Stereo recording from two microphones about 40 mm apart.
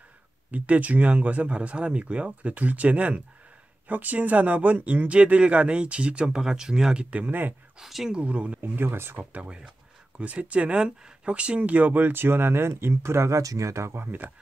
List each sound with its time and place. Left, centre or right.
0.5 s speech: right
6.4 s speech: centre
7.2 s speech: right
7.8 s speech: centre
8.1 s speech: right
8.5 s speech: right
9.4 s speech: right
12.1 s speech: right
14.0 s speech: right